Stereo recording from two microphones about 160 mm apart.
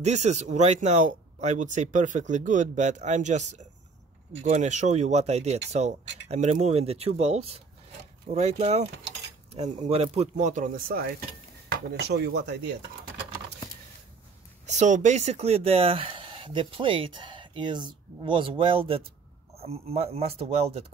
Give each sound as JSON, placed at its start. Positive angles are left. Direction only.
{"t": 0.0, "sound": "speech", "side_deg": -45}
{"t": 11.9, "sound": "speech", "side_deg": -90}
{"t": 14.7, "sound": "speech", "side_deg": -50}